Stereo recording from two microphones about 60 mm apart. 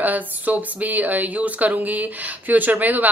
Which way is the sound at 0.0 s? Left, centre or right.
Right.